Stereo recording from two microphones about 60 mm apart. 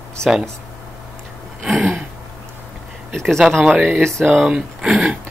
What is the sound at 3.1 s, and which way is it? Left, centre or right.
Speech, centre.